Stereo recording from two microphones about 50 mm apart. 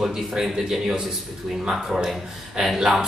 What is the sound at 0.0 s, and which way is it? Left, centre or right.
A man's voice, centre.